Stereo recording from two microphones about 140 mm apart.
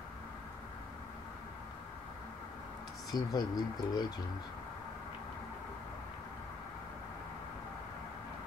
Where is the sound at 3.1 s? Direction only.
30° left (ahead or behind).